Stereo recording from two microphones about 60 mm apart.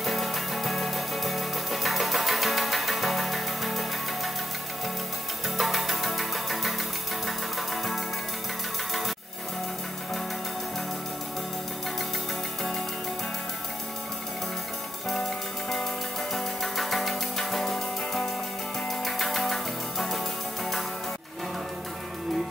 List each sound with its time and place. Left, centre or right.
0.0 s music: centre
5.6 s music: centre
16.3 s music: centre